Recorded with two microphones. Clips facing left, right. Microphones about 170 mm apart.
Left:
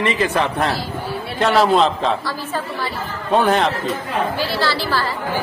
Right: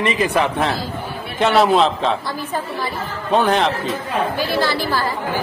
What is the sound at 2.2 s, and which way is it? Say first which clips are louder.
Speech: even; 15° right (ahead or behind).